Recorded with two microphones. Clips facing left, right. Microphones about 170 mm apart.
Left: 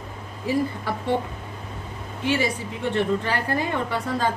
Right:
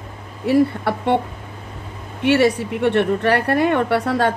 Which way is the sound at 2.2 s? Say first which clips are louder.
Right 9 dB; 70° right (ahead or behind).